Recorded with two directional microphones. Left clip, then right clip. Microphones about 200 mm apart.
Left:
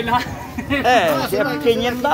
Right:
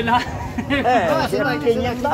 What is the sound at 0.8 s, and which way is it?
Speech, 15° left (ahead or behind).